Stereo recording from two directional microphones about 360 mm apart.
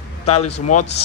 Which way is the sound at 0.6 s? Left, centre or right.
Left.